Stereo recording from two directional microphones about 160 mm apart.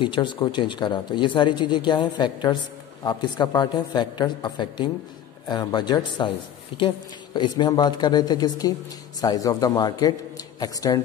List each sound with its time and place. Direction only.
0.0 s a woman's voice: 30° left (ahead or behind)